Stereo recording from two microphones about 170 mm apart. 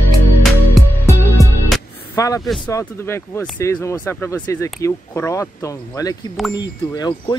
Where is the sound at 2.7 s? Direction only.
15° left (ahead or behind).